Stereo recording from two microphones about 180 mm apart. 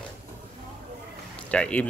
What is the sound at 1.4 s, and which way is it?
Speech, 5° left (ahead or behind).